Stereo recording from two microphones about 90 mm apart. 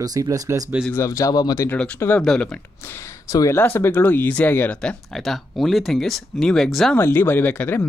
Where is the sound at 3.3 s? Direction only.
40° left (ahead or behind).